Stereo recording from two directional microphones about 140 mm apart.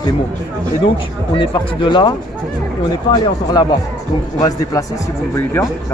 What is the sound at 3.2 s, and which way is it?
Speech, 30° left (ahead or behind).